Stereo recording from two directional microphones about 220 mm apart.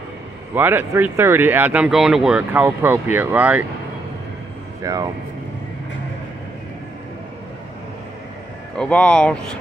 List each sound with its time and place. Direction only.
0.6 s speech: 10° right (ahead or behind)
4.9 s speech: 15° right (ahead or behind)
8.7 s speech: 5° left (ahead or behind)